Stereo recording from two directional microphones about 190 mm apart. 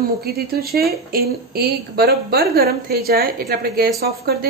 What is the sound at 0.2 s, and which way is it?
A woman's voice, 55° right (ahead or behind).